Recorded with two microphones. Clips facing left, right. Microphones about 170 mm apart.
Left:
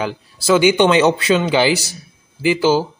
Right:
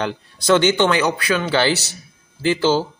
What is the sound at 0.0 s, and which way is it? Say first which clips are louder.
Speech: left 1 dB; 5° left (ahead or behind).